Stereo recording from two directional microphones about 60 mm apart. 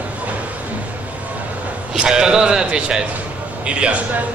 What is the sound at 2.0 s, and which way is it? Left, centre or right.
A man's voice, centre.